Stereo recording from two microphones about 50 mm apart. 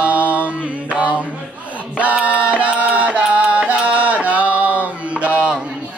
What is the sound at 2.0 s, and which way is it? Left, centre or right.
Music, right.